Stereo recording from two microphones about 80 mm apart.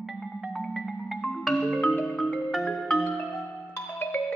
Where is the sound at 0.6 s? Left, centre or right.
Centre.